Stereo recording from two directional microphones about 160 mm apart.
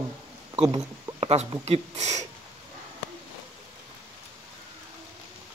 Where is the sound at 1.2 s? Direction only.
40° right (ahead or behind).